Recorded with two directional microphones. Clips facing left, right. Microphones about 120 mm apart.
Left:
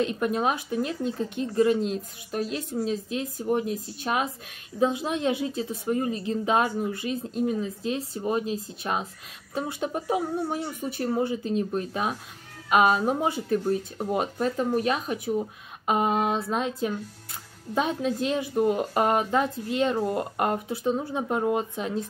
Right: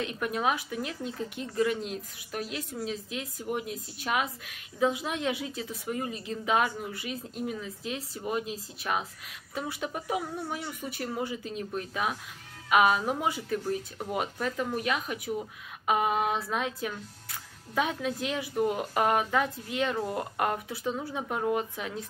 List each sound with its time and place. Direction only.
0.0 s speech: 30° left (ahead or behind)